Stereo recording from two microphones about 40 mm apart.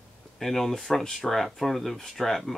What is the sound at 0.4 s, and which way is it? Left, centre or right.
Speech, centre.